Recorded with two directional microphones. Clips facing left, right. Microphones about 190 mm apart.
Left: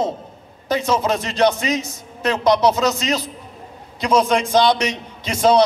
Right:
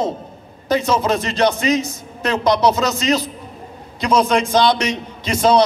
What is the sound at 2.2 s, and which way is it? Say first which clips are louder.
Speech: even; 5° left (ahead or behind).